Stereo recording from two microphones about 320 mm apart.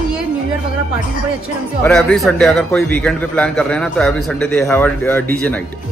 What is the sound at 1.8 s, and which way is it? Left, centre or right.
Speech, centre.